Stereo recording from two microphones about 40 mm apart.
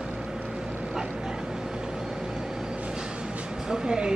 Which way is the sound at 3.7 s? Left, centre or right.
Centre.